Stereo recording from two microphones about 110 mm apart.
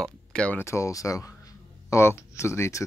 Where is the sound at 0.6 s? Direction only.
25° left (ahead or behind).